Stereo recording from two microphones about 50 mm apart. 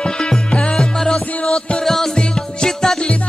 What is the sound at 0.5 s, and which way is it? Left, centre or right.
Music, centre.